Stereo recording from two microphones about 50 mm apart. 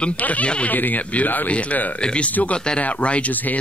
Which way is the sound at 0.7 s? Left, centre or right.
Left.